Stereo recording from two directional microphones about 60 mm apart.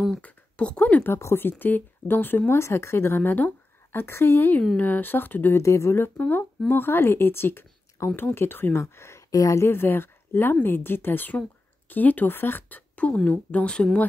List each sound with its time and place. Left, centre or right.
0.2 s speech: left
1.0 s speech: left
5.5 s speech: left
6.0 s speech: left
8.0 s speech: left
8.4 s speech: left
8.7 s speech: left
9.3 s speech: left